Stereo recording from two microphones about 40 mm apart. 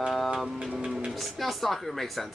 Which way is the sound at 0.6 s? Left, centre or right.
Right.